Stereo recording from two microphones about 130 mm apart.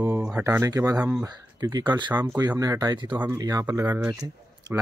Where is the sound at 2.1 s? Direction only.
25° right (ahead or behind).